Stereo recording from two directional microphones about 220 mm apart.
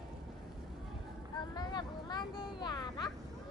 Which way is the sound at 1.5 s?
20° left (ahead or behind).